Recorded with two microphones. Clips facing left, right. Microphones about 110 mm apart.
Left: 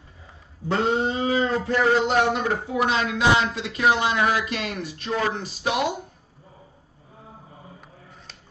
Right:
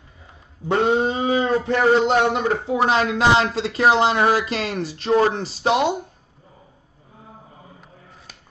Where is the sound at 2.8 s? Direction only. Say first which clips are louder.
Right 4 dB; 35° right (ahead or behind).